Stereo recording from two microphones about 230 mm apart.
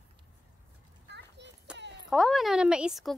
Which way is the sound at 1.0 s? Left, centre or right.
Right.